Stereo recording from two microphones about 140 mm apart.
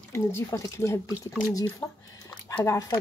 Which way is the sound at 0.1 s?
20° left (ahead or behind).